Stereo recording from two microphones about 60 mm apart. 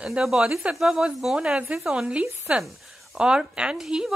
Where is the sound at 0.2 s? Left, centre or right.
Centre.